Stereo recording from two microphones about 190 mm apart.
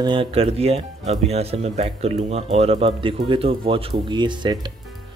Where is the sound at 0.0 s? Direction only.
25° right (ahead or behind).